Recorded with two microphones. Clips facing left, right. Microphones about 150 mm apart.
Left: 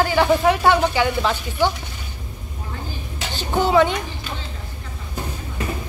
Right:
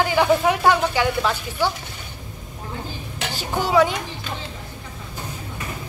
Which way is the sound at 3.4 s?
5° right (ahead or behind).